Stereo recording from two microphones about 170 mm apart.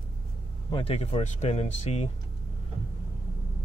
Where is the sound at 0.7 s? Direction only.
35° left (ahead or behind).